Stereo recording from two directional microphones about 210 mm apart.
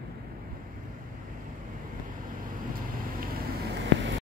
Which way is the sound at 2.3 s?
40° right (ahead or behind).